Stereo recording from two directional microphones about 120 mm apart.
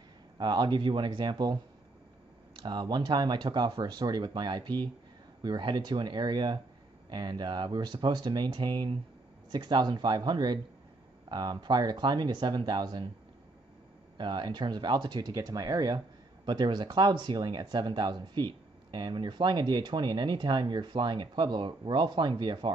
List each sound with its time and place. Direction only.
0.4 s speech: 40° right (ahead or behind)
2.6 s speech: 40° right (ahead or behind)
14.1 s speech: 40° right (ahead or behind)